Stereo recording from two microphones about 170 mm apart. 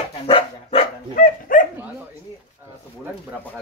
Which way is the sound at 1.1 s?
50° left (ahead or behind).